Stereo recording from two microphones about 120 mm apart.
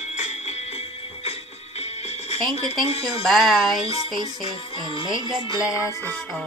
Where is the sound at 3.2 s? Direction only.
Centre (ahead or behind).